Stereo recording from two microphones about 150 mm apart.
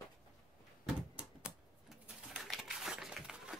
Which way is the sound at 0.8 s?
5° right (ahead or behind).